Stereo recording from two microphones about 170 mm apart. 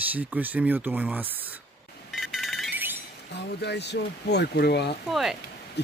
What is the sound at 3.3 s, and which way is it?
Speech, 85° left.